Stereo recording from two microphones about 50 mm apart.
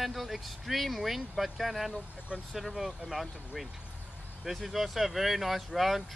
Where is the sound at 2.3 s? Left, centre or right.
Right.